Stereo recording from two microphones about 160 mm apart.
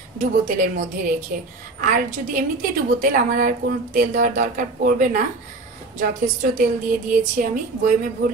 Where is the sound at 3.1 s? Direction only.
60° right (ahead or behind).